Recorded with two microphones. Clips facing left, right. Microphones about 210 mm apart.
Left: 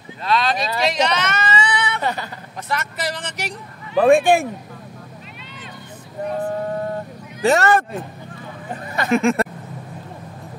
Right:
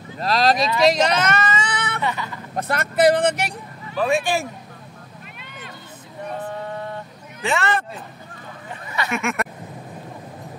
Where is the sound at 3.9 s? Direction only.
50° left (ahead or behind).